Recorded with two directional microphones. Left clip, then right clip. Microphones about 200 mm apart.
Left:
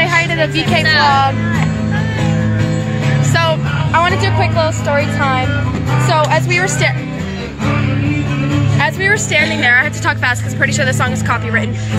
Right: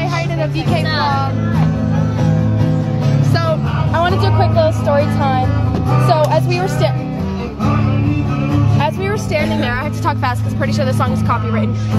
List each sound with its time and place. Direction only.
0.0 s music: 35° left (ahead or behind)
1.0 s speech: 25° left (ahead or behind)
4.0 s speech: 5° right (ahead or behind)
8.7 s speech: 5° right (ahead or behind)
10.0 s speech: 10° right (ahead or behind)